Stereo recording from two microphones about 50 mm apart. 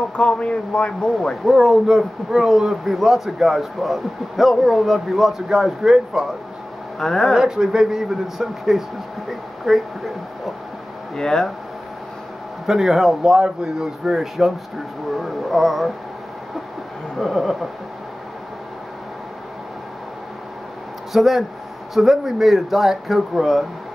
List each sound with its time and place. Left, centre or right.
0.1 s speech: left
1.4 s speech: centre
7.0 s speech: centre
7.3 s speech: centre
11.1 s speech: centre
12.6 s speech: centre
13.3 s speech: centre
14.1 s speech: centre
17.2 s speech: centre
21.1 s speech: centre